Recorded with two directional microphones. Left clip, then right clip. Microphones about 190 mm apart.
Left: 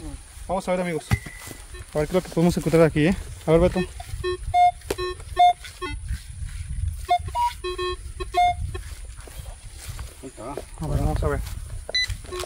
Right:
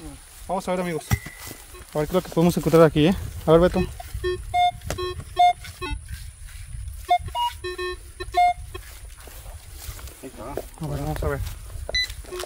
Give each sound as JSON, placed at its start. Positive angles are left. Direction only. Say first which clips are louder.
{"t": 0.5, "sound": "speech", "louder": "left 1 dB", "side_deg": -30}
{"t": 4.2, "sound": "music", "louder": "left 3 dB", "side_deg": -25}
{"t": 7.1, "sound": "music", "louder": "even", "side_deg": -20}
{"t": 10.4, "sound": "snake", "louder": "even", "side_deg": -25}
{"t": 11.2, "sound": "a sound", "louder": "left 1 dB", "side_deg": -20}